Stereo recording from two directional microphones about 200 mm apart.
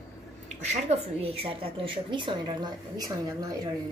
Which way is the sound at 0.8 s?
30° right (ahead or behind).